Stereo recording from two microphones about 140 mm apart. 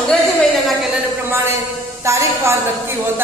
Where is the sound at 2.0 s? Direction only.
20° right (ahead or behind).